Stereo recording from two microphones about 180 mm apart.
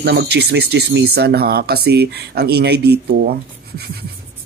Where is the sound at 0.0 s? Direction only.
70° right (ahead or behind).